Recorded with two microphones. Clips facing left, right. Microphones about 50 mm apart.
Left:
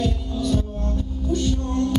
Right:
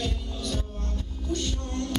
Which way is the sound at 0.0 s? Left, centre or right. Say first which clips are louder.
Left 8 dB; centre.